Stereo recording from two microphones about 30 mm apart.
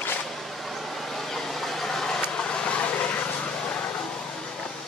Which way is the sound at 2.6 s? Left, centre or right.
Left.